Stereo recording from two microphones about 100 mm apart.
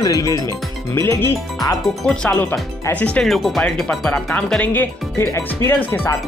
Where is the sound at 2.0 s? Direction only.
15° left (ahead or behind).